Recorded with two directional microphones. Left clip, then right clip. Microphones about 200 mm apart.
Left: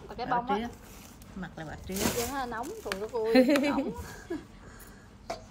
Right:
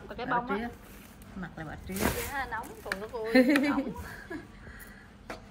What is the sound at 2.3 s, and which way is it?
Speech, 20° left (ahead or behind).